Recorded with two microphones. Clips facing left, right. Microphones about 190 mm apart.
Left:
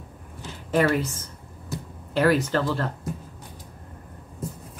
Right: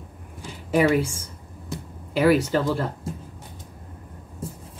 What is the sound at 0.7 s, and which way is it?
Speech, 10° right (ahead or behind).